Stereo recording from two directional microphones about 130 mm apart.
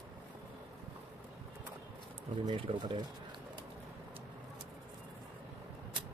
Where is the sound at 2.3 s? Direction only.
35° right (ahead or behind).